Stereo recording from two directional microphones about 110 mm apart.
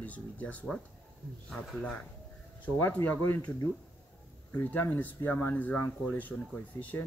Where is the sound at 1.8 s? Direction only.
10° left (ahead or behind).